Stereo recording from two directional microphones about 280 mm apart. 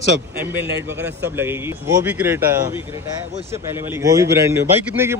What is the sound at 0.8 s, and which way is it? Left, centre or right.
Speech, centre.